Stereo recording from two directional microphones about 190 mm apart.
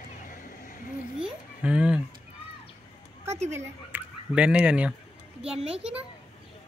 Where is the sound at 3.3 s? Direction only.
35° right (ahead or behind).